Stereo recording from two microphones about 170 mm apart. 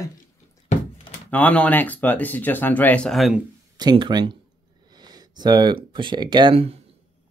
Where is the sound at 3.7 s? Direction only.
25° right (ahead or behind).